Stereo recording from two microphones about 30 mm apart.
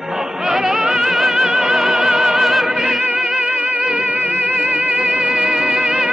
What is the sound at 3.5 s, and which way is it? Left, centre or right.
Music, right.